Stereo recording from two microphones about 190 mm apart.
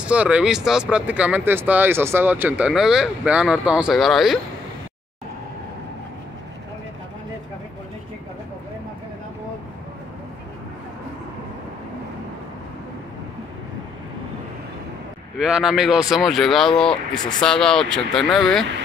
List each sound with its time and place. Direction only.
0.0 s speech: 5° right (ahead or behind)
15.3 s speech: 5° right (ahead or behind)
16.8 s speech: 25° left (ahead or behind)
17.4 s speech: 5° left (ahead or behind)